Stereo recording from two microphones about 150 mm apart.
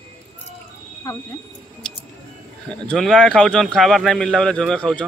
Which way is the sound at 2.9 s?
5° left (ahead or behind).